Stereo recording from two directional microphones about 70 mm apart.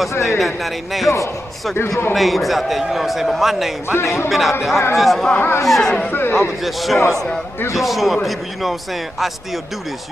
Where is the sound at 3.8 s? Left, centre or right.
Left.